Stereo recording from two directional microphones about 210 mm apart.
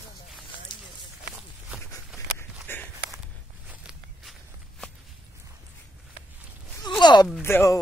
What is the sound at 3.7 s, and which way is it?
Walk, 5° right (ahead or behind).